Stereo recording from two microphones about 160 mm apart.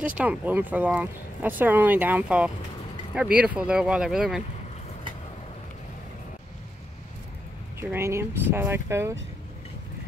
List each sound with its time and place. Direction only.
0.2 s speech: 10° right (ahead or behind)
7.9 s speech: 15° right (ahead or behind)